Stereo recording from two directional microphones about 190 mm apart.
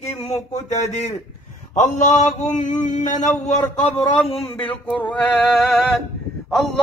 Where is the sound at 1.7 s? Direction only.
40° left (ahead or behind).